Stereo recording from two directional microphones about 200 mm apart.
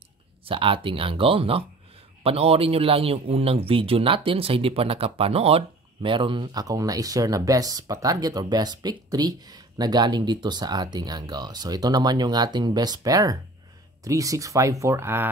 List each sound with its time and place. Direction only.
0.5 s speech: 25° right (ahead or behind)